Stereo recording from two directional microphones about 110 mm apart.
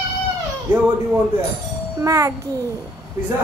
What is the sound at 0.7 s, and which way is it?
Speech, 20° right (ahead or behind).